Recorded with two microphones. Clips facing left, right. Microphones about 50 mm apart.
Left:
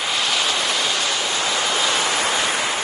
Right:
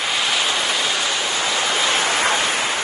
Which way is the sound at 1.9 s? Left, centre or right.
Right.